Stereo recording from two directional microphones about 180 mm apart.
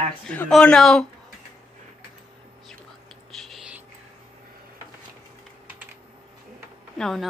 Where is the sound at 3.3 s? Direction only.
Centre (ahead or behind).